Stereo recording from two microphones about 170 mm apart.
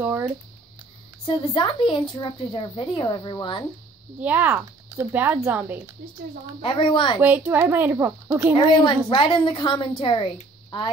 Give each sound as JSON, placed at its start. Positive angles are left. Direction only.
{"t": 1.2, "sound": "a woman's voice", "side_deg": 30}
{"t": 4.2, "sound": "speech", "side_deg": -10}
{"t": 6.6, "sound": "a woman's voice", "side_deg": 30}
{"t": 7.2, "sound": "speech", "side_deg": -10}
{"t": 8.5, "sound": "a woman's voice", "side_deg": 30}